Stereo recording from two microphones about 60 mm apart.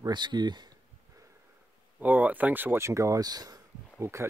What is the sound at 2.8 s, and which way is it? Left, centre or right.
Speech, right.